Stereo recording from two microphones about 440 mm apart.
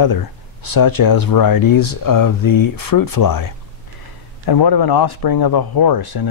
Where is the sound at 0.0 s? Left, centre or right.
Left.